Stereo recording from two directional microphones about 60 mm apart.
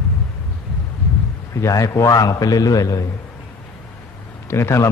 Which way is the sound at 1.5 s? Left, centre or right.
Left.